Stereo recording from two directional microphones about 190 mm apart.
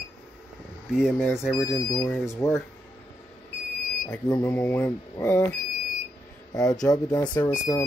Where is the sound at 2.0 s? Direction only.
10° left (ahead or behind).